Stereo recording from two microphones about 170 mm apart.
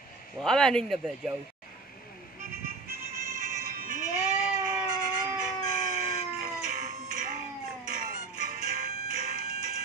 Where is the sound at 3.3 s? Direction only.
50° right (ahead or behind).